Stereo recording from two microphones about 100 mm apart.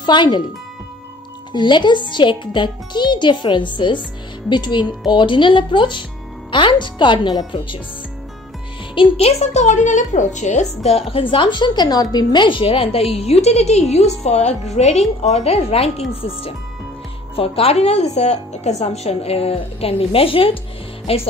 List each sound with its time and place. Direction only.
0.0 s a child's voice: 50° left (ahead or behind)
1.5 s a child's voice: 50° left (ahead or behind)
9.1 s a woman's voice: 90° left
10.8 s a woman's voice: 90° left; by 13.0 s 65° left (ahead or behind)
13.1 s a woman's voice: 90° left
17.4 s speech: 85° left; by 20.5 s 65° left (ahead or behind)
21.1 s speech: 80° left